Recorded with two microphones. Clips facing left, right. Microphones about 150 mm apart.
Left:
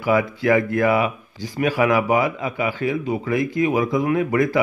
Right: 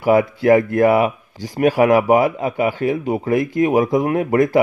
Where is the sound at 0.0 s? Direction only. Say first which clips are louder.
Right 5 dB; 45° right (ahead or behind).